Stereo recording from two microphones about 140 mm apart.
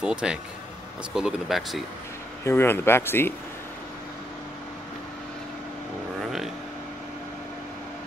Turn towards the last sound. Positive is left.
turn(degrees=0)  # may be behind; listen again after turning